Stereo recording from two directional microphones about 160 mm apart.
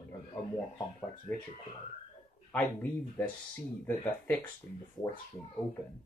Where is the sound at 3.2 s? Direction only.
15° left (ahead or behind).